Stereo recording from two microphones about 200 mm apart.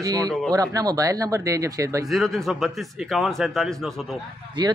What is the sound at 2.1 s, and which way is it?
A man's voice, centre (ahead or behind).